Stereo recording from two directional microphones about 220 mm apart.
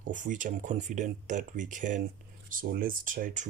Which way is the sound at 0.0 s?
35° right (ahead or behind).